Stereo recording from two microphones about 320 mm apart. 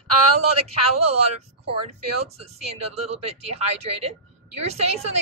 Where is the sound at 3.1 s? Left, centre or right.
Centre.